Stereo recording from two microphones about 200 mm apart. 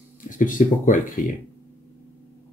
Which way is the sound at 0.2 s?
40° left (ahead or behind).